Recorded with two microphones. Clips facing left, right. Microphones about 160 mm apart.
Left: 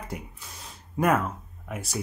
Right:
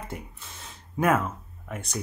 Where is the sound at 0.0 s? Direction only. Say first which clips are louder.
Left 1 dB; centre (ahead or behind).